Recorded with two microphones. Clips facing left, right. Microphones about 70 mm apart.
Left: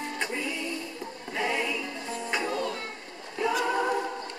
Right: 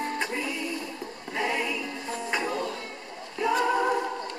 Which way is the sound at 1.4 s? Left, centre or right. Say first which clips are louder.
Right 1 dB; centre.